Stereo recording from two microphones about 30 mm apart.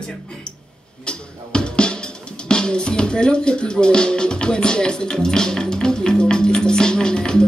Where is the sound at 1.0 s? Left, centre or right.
Left.